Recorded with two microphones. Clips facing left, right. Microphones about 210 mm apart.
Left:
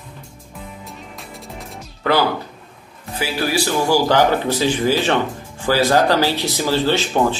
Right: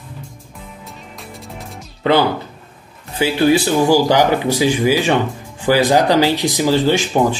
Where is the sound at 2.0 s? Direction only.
20° right (ahead or behind).